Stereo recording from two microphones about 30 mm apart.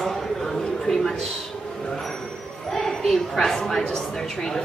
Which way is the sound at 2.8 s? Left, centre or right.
Centre.